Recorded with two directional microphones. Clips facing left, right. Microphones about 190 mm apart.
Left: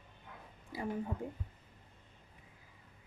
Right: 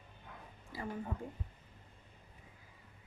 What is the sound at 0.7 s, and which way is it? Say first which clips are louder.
Speech: left 3 dB; 15° left (ahead or behind).